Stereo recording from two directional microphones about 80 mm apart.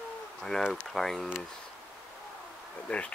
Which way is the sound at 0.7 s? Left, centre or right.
Centre.